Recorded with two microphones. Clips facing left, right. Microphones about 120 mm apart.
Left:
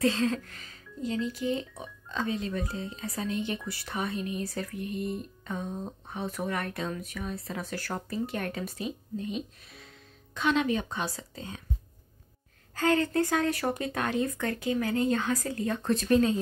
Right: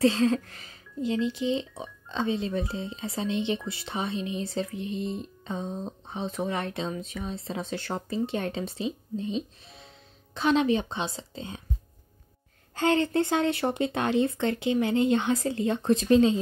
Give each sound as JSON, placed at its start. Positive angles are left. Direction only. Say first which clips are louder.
{"t": 0.0, "sound": "speech", "louder": "right 4 dB", "side_deg": -30}
{"t": 12.7, "sound": "speech", "louder": "right 2 dB", "side_deg": -25}